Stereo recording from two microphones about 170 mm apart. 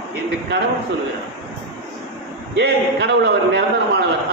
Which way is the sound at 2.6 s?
80° right.